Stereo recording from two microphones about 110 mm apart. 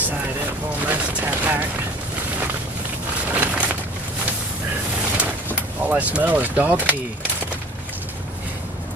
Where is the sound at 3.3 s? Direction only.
15° right (ahead or behind).